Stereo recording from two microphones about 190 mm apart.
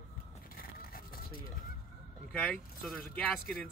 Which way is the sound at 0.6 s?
50° left (ahead or behind).